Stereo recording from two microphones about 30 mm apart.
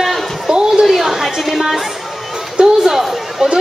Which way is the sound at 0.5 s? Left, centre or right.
Right.